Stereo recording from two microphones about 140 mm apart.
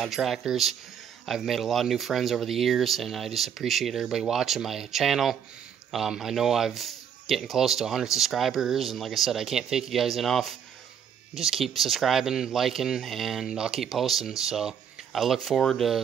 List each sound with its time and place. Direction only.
0.0 s speech: centre (ahead or behind)